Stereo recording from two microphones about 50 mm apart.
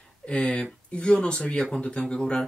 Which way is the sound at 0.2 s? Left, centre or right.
Left.